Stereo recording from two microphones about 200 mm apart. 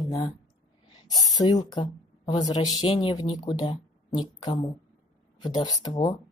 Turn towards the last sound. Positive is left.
turn(degrees=20)  # may be behind; listen again after turning